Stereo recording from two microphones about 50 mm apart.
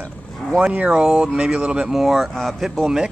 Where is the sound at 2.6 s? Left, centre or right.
Centre.